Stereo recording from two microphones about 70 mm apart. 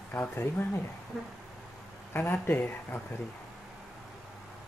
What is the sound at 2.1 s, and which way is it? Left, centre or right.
Speech, left.